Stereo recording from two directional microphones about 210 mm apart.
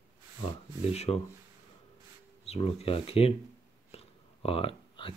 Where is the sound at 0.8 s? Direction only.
30° left (ahead or behind).